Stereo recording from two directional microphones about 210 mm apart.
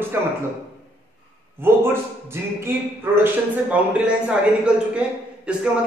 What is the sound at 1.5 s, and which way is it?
A man's voice, 10° right (ahead or behind).